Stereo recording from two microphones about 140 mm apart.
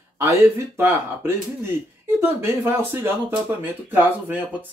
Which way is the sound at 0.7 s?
20° right (ahead or behind).